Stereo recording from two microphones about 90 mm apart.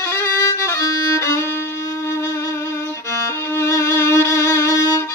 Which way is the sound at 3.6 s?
35° left (ahead or behind).